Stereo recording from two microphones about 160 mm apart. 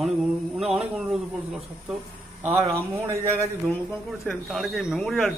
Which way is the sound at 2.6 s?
20° right (ahead or behind).